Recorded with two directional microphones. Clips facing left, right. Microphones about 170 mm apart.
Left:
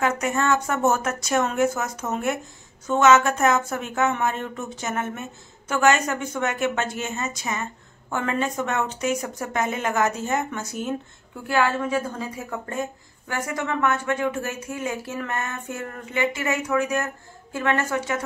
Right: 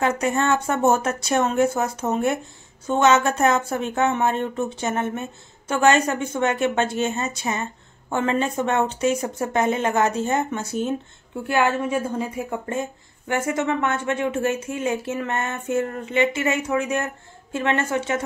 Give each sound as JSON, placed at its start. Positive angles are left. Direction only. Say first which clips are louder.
{"t": 0.0, "sound": "a woman's voice", "louder": "right 2 dB", "side_deg": -30}
{"t": 12.1, "sound": "a woman's voice", "louder": "right 5 dB", "side_deg": -20}